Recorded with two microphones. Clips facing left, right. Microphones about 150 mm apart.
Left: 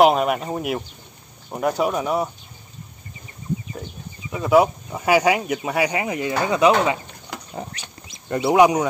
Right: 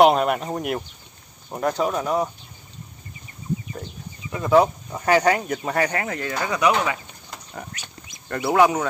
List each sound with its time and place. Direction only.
0.0 s speech: centre (ahead or behind)
4.3 s speech: 10° left (ahead or behind); by 7.0 s 25° left (ahead or behind)
7.3 s a sound: 80° left
8.3 s speech: 20° left (ahead or behind)